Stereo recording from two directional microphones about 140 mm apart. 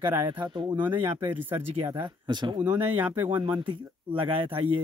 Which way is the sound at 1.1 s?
15° right (ahead or behind).